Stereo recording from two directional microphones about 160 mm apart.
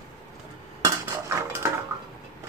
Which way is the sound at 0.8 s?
20° right (ahead or behind).